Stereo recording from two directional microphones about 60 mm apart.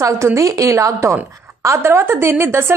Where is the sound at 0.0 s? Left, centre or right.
Right.